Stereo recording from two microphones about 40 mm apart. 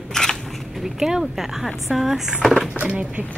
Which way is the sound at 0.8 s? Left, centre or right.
Centre.